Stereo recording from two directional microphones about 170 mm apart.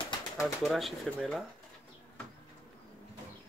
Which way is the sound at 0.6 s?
Centre (ahead or behind).